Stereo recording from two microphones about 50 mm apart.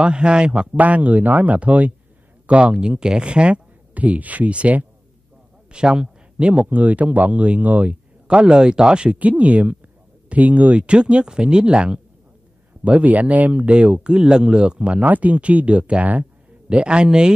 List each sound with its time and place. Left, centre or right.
0.0 s a man's voice: centre
0.7 s speech: right